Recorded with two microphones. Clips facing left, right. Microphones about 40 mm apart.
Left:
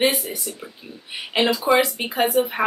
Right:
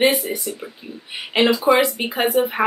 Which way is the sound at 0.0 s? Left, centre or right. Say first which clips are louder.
Right 3 dB; centre.